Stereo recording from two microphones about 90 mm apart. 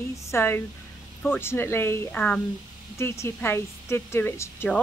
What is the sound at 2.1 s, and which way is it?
Speech, 15° left (ahead or behind).